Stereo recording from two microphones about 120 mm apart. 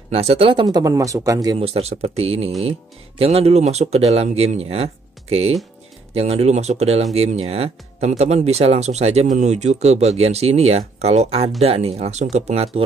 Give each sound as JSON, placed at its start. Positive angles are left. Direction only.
{"t": 0.1, "sound": "speech", "side_deg": -60}
{"t": 1.6, "sound": "speech", "side_deg": -60}